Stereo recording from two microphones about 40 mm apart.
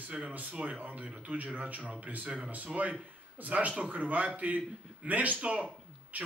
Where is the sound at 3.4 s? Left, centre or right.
Right.